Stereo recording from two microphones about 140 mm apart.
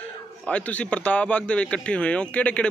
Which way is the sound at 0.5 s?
10° left (ahead or behind).